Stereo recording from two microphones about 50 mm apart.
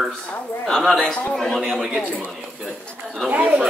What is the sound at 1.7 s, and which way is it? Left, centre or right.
Speech, centre.